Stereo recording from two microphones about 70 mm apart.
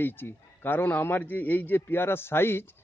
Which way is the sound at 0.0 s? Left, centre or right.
Left.